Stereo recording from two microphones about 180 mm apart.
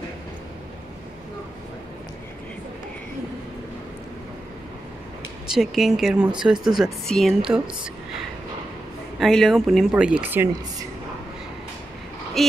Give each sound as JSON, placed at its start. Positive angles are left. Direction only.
{"t": 5.5, "sound": "speech", "side_deg": -5}
{"t": 9.2, "sound": "speech", "side_deg": 0}
{"t": 12.4, "sound": "speech", "side_deg": 0}